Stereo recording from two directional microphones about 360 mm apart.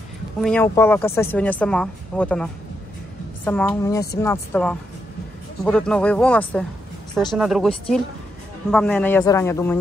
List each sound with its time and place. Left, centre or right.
0.4 s a woman's voice: centre
8.7 s a woman's voice: centre